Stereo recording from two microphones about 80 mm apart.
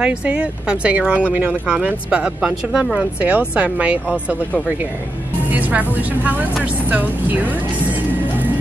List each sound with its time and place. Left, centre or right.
0.0 s speech: centre
5.5 s speech: right